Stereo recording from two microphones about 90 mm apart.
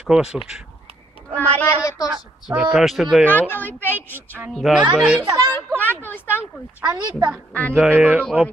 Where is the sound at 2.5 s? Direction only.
10° right (ahead or behind).